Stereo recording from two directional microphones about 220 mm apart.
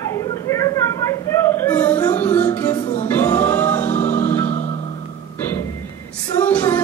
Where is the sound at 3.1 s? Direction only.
10° left (ahead or behind).